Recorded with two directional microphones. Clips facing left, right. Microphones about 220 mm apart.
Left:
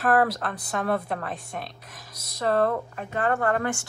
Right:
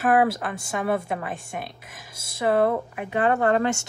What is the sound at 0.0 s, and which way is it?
A woman's voice, centre (ahead or behind).